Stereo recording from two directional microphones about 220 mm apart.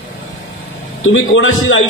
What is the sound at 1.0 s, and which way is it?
Speech, 60° left (ahead or behind).